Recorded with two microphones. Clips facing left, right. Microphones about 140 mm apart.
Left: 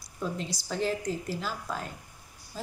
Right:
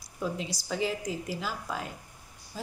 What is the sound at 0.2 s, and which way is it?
Speech, 5° right (ahead or behind).